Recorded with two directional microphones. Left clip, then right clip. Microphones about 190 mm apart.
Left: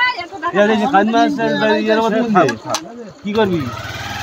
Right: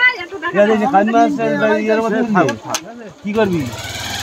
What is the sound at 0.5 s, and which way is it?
A man's voice, 35° right (ahead or behind).